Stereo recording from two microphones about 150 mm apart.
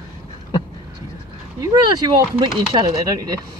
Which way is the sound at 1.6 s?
25° right (ahead or behind).